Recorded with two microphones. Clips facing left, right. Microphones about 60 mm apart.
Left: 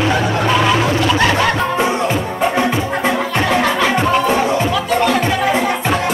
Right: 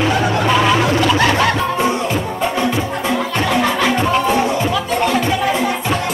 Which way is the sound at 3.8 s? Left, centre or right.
Centre.